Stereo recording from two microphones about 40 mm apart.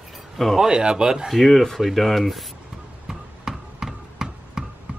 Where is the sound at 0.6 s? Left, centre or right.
Centre.